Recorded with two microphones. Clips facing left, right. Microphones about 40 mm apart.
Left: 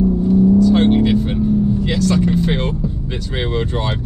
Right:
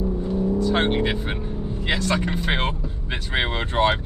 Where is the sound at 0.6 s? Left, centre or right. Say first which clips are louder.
Left 8 dB; right.